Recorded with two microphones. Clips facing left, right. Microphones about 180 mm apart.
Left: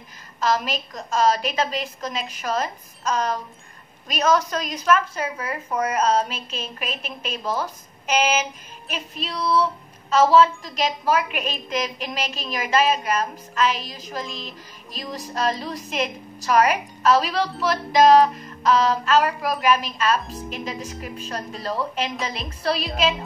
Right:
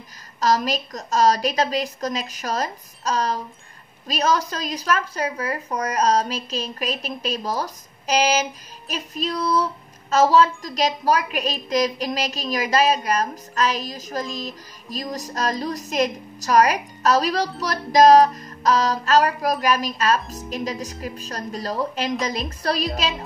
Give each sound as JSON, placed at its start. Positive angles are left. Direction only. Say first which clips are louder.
{"t": 0.4, "sound": "a woman's voice", "louder": "right 2 dB", "side_deg": -40}